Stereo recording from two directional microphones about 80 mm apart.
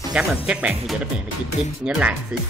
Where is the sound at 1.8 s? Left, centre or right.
Centre.